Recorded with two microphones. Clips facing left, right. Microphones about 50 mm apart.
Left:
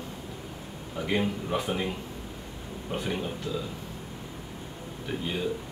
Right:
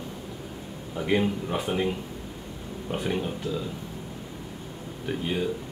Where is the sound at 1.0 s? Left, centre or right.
Centre.